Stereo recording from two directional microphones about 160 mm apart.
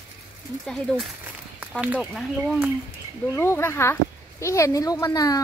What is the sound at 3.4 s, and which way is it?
Speech, 15° left (ahead or behind).